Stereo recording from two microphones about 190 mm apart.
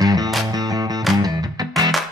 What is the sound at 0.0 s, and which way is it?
Music, 20° right (ahead or behind).